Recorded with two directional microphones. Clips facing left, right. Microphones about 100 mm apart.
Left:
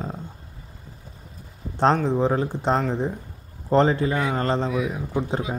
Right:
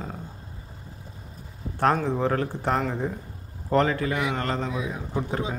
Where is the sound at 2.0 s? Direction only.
20° left (ahead or behind).